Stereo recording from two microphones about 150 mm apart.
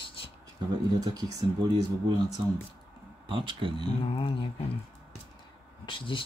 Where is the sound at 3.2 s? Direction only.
35° right (ahead or behind).